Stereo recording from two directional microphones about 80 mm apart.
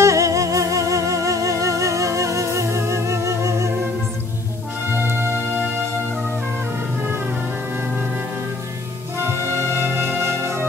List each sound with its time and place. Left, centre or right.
0.0 s music: right
4.9 s music: right
9.2 s music: right